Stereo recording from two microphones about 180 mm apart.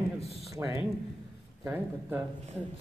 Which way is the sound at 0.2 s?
35° left (ahead or behind).